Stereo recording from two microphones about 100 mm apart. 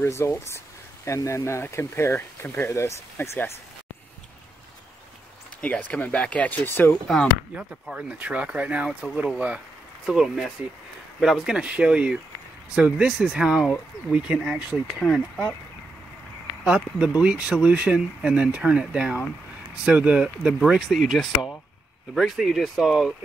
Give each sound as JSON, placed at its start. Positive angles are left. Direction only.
{"t": 0.0, "sound": "speech", "side_deg": 25}
{"t": 5.6, "sound": "speech", "side_deg": 15}
{"t": 7.5, "sound": "speech", "side_deg": -10}
{"t": 16.6, "sound": "speech", "side_deg": -10}